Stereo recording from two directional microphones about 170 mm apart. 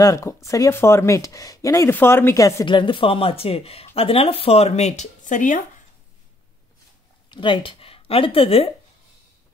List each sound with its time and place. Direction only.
0.0 s speech: 20° left (ahead or behind); by 5.6 s 50° left (ahead or behind)
7.2 s speech: 30° left (ahead or behind)